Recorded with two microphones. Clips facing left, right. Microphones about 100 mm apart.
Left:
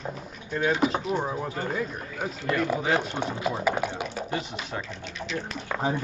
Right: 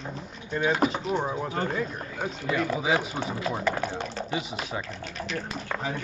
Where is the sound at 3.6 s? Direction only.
10° left (ahead or behind).